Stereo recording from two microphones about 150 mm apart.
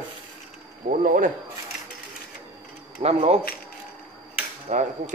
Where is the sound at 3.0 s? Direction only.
40° right (ahead or behind).